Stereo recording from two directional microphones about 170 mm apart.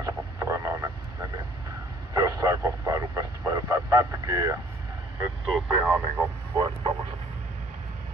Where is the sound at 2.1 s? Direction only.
20° right (ahead or behind).